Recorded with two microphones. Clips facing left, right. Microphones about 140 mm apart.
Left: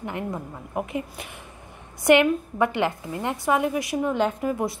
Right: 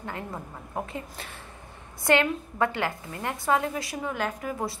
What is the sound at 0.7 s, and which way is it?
A woman's voice, 15° left (ahead or behind).